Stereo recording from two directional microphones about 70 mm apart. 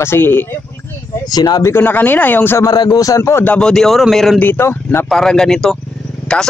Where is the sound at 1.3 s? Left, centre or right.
Left.